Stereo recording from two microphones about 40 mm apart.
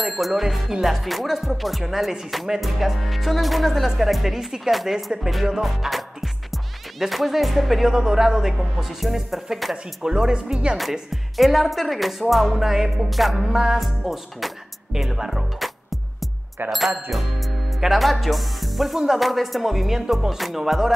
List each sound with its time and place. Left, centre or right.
0.0 s speech: centre
10.0 s speech: centre
10.8 s speech: centre
13.5 s speech: centre
15.6 s music: centre
16.7 s speech: centre